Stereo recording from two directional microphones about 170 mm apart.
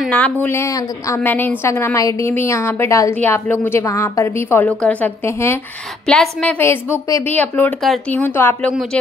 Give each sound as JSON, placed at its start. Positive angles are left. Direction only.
{"t": 0.1, "sound": "a woman's voice", "side_deg": 10}
{"t": 6.0, "sound": "a woman's voice", "side_deg": 5}
{"t": 7.1, "sound": "a woman's voice", "side_deg": 20}
{"t": 7.8, "sound": "a woman's voice", "side_deg": 0}
{"t": 8.4, "sound": "a woman's voice", "side_deg": 15}